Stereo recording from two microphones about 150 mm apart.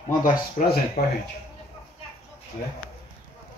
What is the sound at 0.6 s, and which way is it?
Speech, 55° left (ahead or behind).